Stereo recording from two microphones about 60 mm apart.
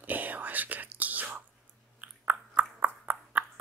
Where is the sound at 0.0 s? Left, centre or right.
Right.